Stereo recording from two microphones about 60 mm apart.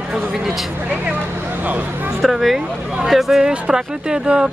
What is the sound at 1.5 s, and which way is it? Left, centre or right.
Speech, right.